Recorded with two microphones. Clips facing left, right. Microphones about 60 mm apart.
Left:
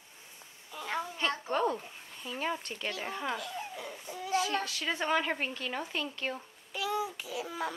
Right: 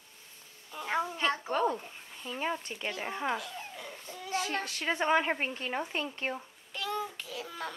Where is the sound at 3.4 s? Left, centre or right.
Centre.